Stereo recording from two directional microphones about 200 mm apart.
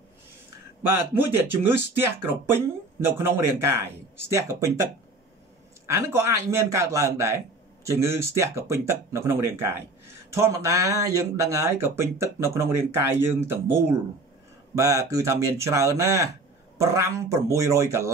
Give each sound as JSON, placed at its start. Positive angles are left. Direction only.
{"t": 0.9, "sound": "a man's voice", "side_deg": -10}
{"t": 5.9, "sound": "a man's voice", "side_deg": -15}